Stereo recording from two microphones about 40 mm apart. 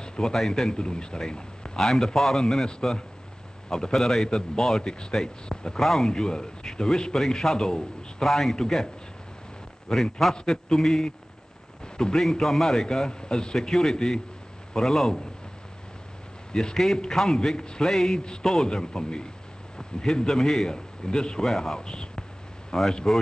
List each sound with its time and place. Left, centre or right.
0.0 s a man's voice: centre
5.8 s a man's voice: centre
6.0 s a man's voice: centre
16.5 s a man's voice: centre